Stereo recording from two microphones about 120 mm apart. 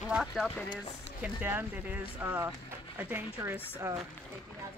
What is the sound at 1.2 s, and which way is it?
Speech, 15° right (ahead or behind).